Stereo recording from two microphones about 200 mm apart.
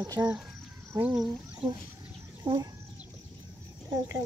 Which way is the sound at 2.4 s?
20° right (ahead or behind).